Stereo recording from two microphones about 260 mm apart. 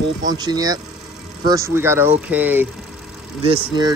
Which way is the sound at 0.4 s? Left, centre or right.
Centre.